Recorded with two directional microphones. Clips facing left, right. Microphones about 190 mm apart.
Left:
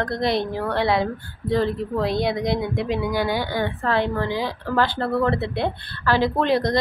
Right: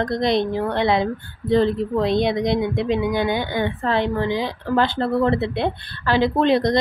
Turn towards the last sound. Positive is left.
turn(degrees=-20)  # may be behind; listen again after turning